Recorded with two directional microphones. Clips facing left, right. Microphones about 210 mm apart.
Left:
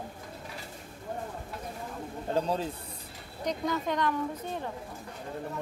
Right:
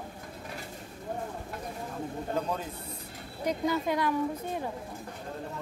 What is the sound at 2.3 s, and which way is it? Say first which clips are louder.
Speech: left 4 dB; 30° left (ahead or behind).